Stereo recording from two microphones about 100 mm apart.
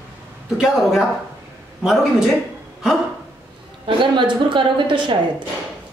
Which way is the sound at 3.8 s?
55° right (ahead or behind).